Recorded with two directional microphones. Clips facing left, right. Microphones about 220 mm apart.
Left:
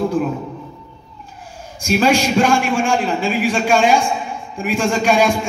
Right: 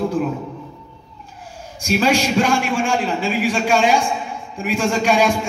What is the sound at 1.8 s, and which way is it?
A man's voice, 50° left (ahead or behind).